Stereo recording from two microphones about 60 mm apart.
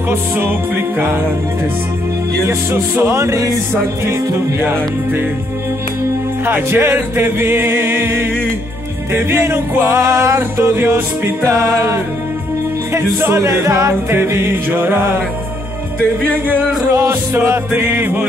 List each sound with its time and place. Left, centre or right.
0.1 s music: right
2.4 s music: right
6.4 s music: right
14.1 s music: right
16.3 s speech: right
17.4 s music: right